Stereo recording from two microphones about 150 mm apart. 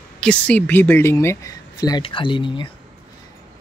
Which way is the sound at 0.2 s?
10° left (ahead or behind).